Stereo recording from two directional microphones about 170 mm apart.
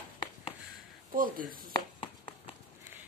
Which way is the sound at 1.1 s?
55° right (ahead or behind).